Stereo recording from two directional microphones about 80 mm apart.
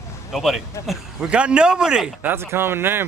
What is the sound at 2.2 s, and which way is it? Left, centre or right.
Speech, right.